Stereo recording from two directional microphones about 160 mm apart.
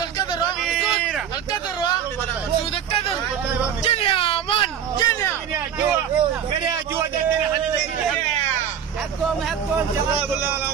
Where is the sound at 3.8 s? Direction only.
35° left (ahead or behind).